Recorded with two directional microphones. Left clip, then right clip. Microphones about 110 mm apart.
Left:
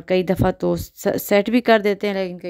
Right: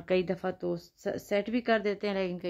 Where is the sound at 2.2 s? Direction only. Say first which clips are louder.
Left 8 dB; 35° left (ahead or behind).